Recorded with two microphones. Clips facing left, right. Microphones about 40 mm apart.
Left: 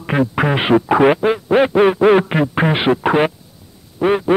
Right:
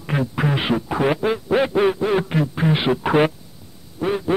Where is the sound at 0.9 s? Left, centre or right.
Left.